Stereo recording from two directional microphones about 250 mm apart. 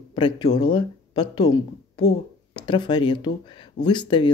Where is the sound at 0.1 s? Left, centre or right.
Centre.